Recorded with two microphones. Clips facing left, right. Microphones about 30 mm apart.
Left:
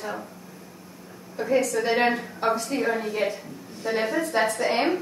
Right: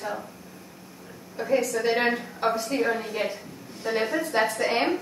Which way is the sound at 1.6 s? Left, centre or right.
Centre.